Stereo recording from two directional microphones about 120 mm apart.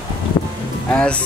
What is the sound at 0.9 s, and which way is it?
Speech, 10° left (ahead or behind).